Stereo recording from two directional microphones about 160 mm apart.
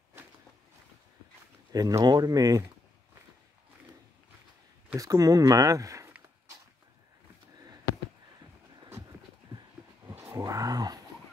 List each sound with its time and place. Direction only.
1.7 s speech: 25° right (ahead or behind)
4.9 s speech: 20° right (ahead or behind)
10.0 s a sound: 15° right (ahead or behind)